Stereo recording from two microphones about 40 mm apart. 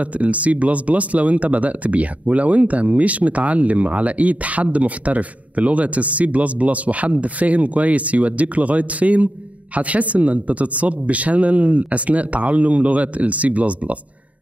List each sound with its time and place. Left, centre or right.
0.0 s speech: right